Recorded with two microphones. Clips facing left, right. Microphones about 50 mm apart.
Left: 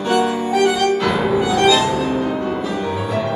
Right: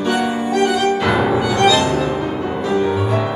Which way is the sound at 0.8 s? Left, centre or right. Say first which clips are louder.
Right 1 dB; centre.